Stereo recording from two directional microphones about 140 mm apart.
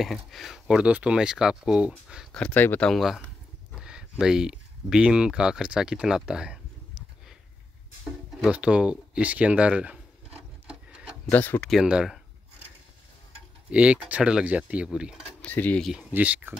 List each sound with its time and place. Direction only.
0.0 s speech: centre (ahead or behind)
2.3 s speech: 10° left (ahead or behind)
2.9 s speech: centre (ahead or behind)
8.4 s speech: 10° right (ahead or behind)
11.2 s speech: 15° left (ahead or behind)
11.7 s speech: 5° right (ahead or behind)
13.7 s speech: 10° right (ahead or behind)
15.4 s speech: 10° left (ahead or behind)
15.9 s speech: 10° right (ahead or behind)